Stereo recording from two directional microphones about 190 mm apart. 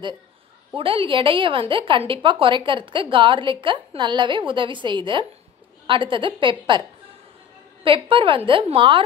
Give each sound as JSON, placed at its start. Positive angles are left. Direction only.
{"t": 0.7, "sound": "a woman's voice", "side_deg": -30}
{"t": 7.8, "sound": "a woman's voice", "side_deg": -25}